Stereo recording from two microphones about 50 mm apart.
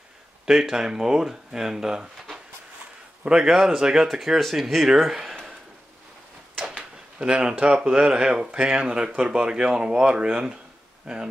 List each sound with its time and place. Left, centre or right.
0.5 s speech: centre
3.3 s speech: centre
6.8 s speech: centre